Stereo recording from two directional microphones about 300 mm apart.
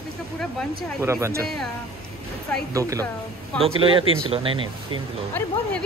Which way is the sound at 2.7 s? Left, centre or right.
Centre.